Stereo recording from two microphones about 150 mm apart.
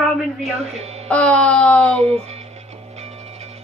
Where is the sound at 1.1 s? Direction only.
10° left (ahead or behind).